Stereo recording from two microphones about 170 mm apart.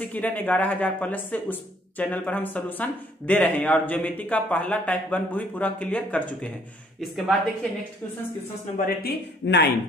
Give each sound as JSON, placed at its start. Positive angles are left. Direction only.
{"t": 0.0, "sound": "speech", "side_deg": 10}
{"t": 8.7, "sound": "speech", "side_deg": 60}